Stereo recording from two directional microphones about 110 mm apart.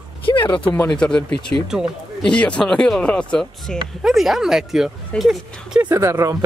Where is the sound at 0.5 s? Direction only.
15° left (ahead or behind); by 5.8 s centre (ahead or behind).